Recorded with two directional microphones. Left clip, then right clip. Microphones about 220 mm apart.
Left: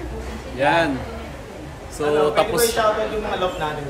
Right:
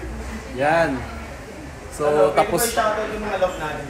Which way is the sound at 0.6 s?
15° right (ahead or behind).